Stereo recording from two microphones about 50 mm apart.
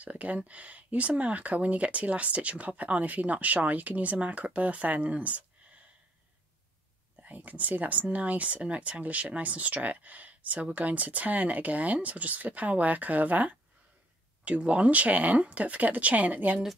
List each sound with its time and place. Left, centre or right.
0.0 s speech: right
7.2 s speech: right